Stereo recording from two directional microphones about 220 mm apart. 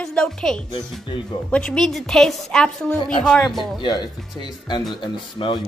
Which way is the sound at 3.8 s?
20° left (ahead or behind).